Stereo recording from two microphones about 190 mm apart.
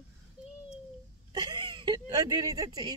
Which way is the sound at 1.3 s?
20° right (ahead or behind).